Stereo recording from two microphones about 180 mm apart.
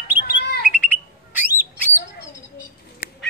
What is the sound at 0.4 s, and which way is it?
Bird, 60° left (ahead or behind).